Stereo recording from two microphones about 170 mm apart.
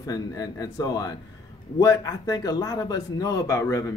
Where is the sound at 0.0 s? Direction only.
20° left (ahead or behind).